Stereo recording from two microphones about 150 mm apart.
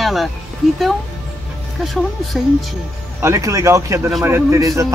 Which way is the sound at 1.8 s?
Centre (ahead or behind).